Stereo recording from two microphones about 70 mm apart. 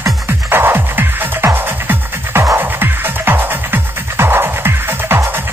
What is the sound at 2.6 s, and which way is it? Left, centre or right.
Music, right.